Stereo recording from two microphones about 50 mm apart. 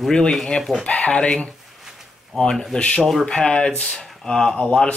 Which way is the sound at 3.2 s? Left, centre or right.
Centre.